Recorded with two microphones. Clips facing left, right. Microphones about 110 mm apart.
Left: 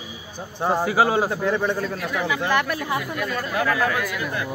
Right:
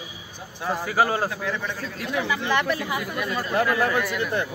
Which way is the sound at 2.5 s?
5° left (ahead or behind).